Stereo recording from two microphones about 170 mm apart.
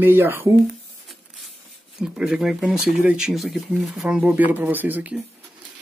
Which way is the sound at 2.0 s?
5° right (ahead or behind).